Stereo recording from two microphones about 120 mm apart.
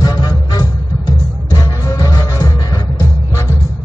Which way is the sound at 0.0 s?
30° left (ahead or behind).